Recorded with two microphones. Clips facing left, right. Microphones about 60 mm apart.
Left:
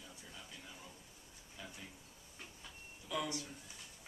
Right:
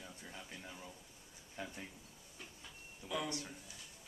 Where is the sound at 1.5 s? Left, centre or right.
Right.